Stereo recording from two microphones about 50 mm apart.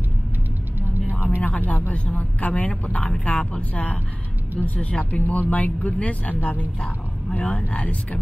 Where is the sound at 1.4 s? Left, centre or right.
Left.